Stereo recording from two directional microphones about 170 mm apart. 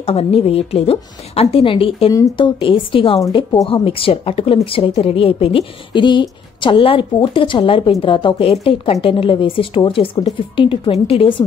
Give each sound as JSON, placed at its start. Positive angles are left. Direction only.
{"t": 0.0, "sound": "a woman's voice", "side_deg": 35}
{"t": 3.6, "sound": "a woman's voice", "side_deg": 30}